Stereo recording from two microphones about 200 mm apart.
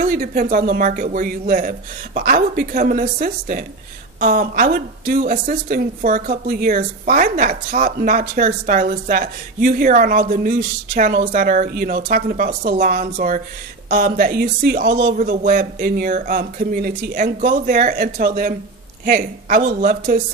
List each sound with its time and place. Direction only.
0.0 s a woman's voice: 45° right (ahead or behind)